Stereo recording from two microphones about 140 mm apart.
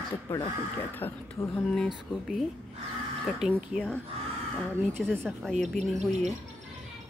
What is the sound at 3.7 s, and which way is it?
Speech, 5° left (ahead or behind).